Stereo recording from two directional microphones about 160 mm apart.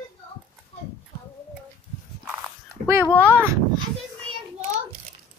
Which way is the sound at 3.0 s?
10° left (ahead or behind).